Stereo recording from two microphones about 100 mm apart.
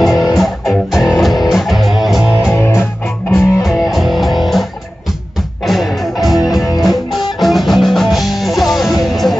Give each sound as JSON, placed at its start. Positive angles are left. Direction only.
{"t": 0.0, "sound": "music", "side_deg": 0}
{"t": 2.5, "sound": "music", "side_deg": 25}
{"t": 2.8, "sound": "music", "side_deg": 0}
{"t": 5.7, "sound": "music", "side_deg": 0}